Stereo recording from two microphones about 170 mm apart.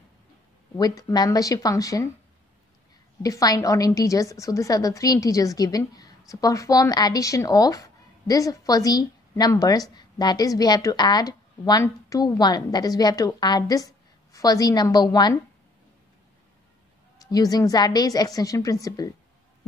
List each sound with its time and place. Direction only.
0.7 s a woman's voice: 20° left (ahead or behind)
3.2 s a woman's voice: 20° left (ahead or behind)
17.2 s a woman's voice: 20° left (ahead or behind)